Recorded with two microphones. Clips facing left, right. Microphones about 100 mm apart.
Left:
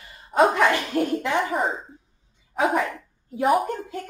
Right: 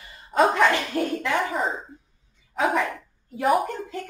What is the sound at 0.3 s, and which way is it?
Speech, 5° left (ahead or behind).